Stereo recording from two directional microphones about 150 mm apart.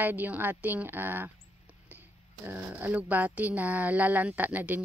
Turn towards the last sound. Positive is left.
turn(degrees=-10)  # may be behind; listen again after turning